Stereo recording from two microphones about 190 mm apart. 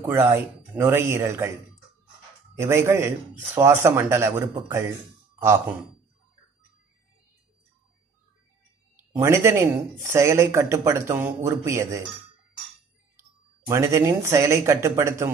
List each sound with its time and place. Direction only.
0.0 s speech: 15° right (ahead or behind)
2.6 s speech: 15° right (ahead or behind)
9.1 s speech: 15° right (ahead or behind)
13.7 s speech: 15° right (ahead or behind)